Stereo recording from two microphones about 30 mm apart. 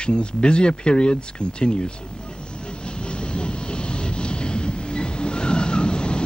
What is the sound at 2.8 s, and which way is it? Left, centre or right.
Vehicle, left.